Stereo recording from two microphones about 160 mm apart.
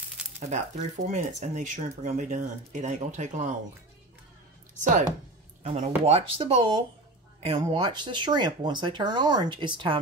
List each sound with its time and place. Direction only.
0.4 s speech: 45° right (ahead or behind)
5.6 s speech: 45° right (ahead or behind)